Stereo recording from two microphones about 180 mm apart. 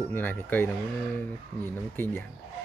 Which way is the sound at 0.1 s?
10° left (ahead or behind).